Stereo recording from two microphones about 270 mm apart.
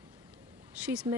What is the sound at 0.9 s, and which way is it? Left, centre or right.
Speech, centre.